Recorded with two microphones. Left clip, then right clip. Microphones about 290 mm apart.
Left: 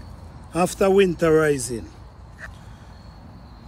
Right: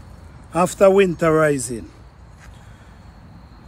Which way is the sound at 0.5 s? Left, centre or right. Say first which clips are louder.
Right 4 dB; right.